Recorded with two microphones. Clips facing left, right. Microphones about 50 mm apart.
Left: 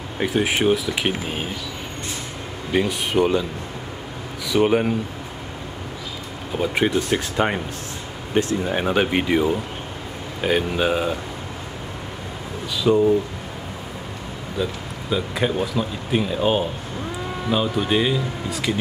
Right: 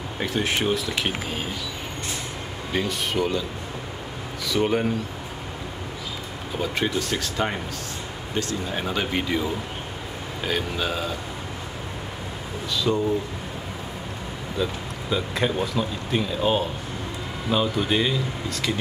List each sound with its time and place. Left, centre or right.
0.2 s speech: centre
2.7 s speech: centre
4.6 s speech: left
6.5 s speech: centre
12.7 s speech: centre
14.6 s speech: centre